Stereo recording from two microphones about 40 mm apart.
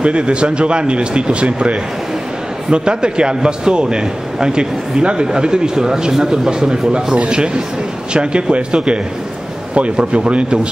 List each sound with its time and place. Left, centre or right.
0.0 s a man's voice: right